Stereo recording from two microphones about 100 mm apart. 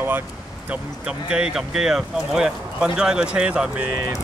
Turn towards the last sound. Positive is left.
turn(degrees=-10)  # may be behind; listen again after turning